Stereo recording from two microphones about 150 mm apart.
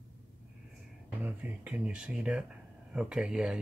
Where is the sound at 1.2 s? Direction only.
10° right (ahead or behind).